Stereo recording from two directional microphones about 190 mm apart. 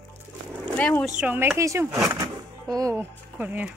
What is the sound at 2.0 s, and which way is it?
Music, 20° right (ahead or behind).